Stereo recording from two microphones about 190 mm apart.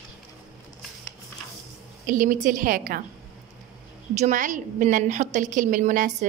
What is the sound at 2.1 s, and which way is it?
Speech, 45° right (ahead or behind).